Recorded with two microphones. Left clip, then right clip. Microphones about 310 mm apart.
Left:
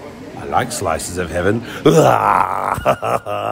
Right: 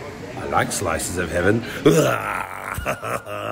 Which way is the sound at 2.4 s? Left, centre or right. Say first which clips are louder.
Left 12 dB; left.